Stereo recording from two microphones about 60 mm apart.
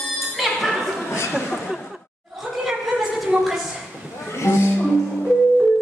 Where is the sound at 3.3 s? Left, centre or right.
Centre.